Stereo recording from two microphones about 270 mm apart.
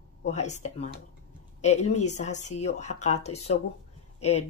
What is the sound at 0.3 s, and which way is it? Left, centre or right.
Speech, left.